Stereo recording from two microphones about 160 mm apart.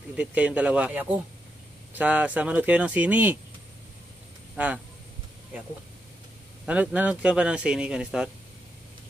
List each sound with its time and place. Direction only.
0.1 s speech: 10° right (ahead or behind)
4.6 s speech: 10° right (ahead or behind)
6.6 s speech: 5° right (ahead or behind)